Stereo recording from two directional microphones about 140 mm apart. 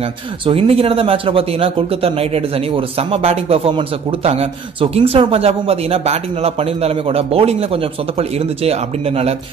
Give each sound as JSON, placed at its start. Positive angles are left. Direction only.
{"t": 0.5, "sound": "speech", "side_deg": -45}